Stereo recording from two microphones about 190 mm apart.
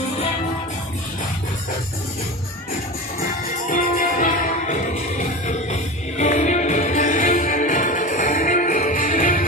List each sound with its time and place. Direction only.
3.2 s music: 50° left (ahead or behind)